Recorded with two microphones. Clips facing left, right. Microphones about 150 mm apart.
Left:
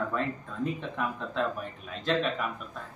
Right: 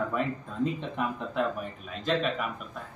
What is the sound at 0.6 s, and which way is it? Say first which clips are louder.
Speech: right 2 dB; 20° right (ahead or behind).